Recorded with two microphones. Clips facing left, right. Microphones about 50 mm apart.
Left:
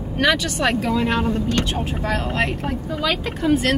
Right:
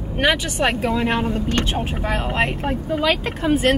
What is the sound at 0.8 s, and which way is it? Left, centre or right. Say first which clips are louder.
Speech: even; right.